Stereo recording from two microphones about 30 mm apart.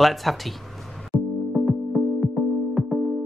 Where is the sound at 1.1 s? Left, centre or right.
Right.